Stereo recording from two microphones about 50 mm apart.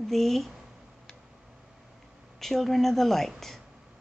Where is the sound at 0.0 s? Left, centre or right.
Centre.